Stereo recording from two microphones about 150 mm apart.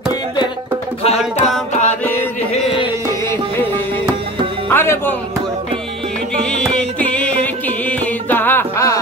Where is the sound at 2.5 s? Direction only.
40° left (ahead or behind).